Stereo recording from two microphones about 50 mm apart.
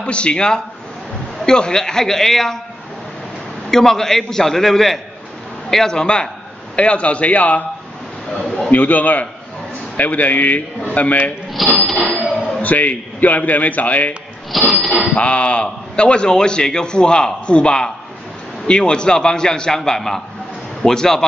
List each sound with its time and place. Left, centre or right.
0.0 s a man's voice: left
3.7 s a man's voice: centre; by 7.6 s left
8.7 s a man's voice: left
11.6 s a sound: centre
12.0 s a man's voice: left
14.7 s a sound: centre
15.1 s a man's voice: left